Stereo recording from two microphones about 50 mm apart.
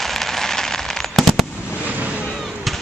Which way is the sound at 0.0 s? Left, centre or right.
Centre.